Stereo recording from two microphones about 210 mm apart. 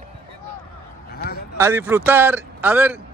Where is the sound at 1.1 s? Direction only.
50° left (ahead or behind).